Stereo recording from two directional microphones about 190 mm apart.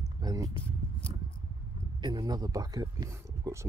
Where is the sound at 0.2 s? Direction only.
20° right (ahead or behind).